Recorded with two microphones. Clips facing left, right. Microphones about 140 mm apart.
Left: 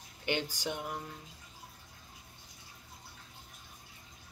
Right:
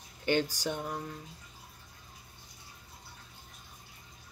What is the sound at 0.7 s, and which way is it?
Speech, 15° left (ahead or behind).